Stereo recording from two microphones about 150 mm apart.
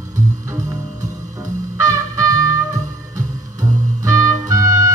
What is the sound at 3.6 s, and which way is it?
Music, 20° right (ahead or behind).